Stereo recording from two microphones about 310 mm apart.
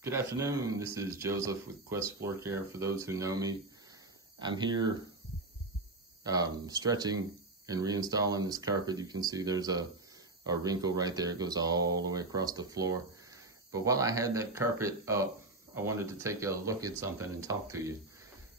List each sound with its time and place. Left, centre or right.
0.0 s speech: centre
6.2 s speech: centre